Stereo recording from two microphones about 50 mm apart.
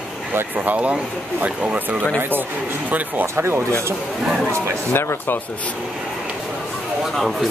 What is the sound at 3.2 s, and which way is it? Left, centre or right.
Speech, right.